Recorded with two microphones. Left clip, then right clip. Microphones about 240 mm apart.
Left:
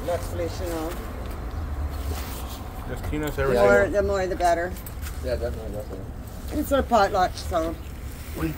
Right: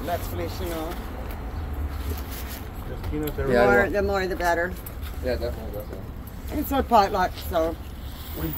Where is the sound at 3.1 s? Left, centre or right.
Left.